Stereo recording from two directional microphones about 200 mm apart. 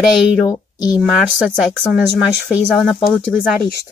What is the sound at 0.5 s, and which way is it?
Speech, 20° left (ahead or behind).